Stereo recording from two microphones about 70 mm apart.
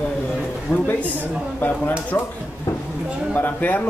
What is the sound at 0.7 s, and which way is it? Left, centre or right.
Speech, centre.